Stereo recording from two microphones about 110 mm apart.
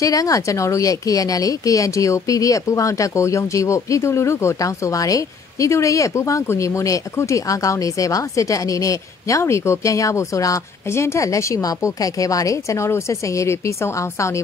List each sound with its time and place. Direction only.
0.0 s a woman's voice: 30° left (ahead or behind)